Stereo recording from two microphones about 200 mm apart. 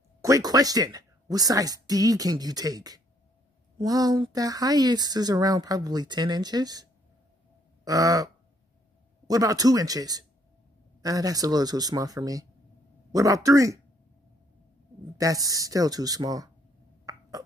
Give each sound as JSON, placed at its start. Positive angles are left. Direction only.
{"t": 0.2, "sound": "a woman's voice", "side_deg": -15}
{"t": 9.3, "sound": "speech", "side_deg": -15}
{"t": 15.1, "sound": "speech", "side_deg": -15}
{"t": 17.1, "sound": "a sound", "side_deg": -15}